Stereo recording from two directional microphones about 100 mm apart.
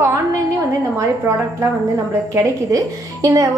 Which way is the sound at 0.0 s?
30° right (ahead or behind).